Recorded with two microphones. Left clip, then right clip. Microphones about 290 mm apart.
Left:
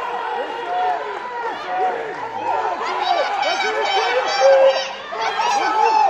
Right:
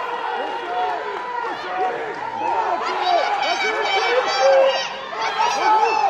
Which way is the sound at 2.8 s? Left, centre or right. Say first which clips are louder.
Even; left.